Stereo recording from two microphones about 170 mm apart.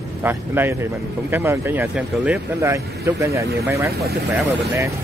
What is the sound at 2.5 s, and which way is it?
Speech, 15° right (ahead or behind).